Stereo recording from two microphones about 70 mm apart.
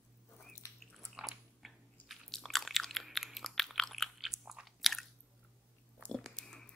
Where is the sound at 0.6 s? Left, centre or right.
Left.